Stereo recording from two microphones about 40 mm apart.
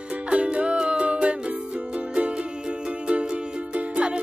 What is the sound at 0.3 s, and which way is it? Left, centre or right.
Music, right.